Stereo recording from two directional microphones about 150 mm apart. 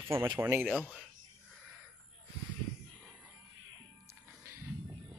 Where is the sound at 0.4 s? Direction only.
15° right (ahead or behind).